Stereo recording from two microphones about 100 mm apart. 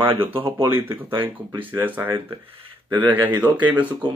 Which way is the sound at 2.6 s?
55° right (ahead or behind).